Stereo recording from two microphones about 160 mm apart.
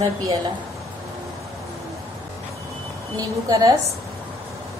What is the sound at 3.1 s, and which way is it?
Speech, 20° right (ahead or behind).